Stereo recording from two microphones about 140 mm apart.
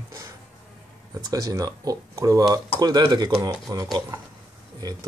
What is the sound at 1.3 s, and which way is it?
Speech, 25° right (ahead or behind).